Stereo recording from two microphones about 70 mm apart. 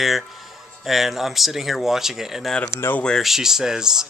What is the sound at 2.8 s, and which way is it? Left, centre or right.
Speech, left.